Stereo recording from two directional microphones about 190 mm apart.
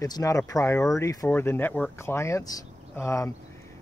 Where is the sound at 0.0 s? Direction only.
15° left (ahead or behind).